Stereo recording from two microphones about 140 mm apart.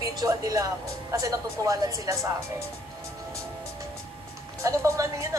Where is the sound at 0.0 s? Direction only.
25° right (ahead or behind).